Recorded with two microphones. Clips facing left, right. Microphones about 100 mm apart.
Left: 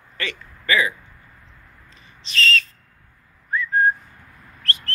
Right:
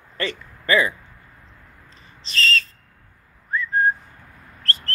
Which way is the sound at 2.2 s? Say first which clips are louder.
Left 1 dB; 35° right (ahead or behind).